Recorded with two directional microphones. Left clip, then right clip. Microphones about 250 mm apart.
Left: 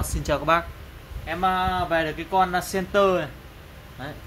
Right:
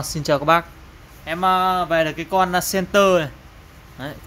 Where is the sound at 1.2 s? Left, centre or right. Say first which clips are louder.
Right 5 dB; right.